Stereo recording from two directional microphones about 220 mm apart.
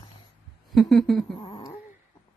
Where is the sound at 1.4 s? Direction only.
20° left (ahead or behind).